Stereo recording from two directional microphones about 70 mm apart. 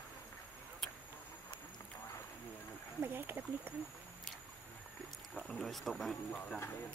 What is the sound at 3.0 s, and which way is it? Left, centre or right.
Speech, right.